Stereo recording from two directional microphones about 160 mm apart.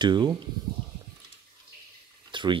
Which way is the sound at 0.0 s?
25° right (ahead or behind).